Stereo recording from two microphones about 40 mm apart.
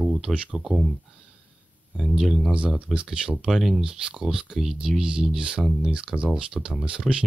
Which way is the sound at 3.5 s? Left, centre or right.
Centre.